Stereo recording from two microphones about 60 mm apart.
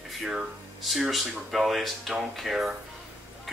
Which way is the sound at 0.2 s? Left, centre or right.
Centre.